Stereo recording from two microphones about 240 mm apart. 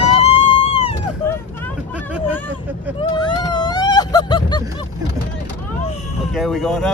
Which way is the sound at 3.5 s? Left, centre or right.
Centre.